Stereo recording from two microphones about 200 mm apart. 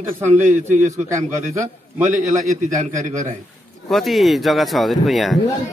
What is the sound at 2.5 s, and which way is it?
Speech, 40° right (ahead or behind).